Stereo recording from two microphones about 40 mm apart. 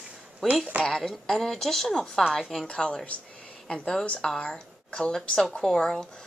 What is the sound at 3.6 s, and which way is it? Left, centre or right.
Speech, centre.